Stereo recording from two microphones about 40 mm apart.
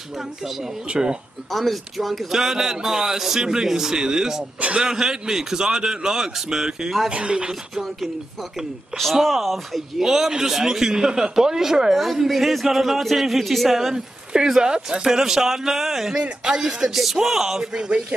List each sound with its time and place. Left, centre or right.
0.4 s a man's voice: centre
0.8 s speech: right
1.5 s a man's voice: centre
4.6 s speech: right
4.8 s a man's voice: centre
7.1 s speech: right
9.1 s a man's voice: centre
11.9 s speech: centre
13.9 s a man's voice: centre
16.2 s a man's voice: right
17.7 s speech: centre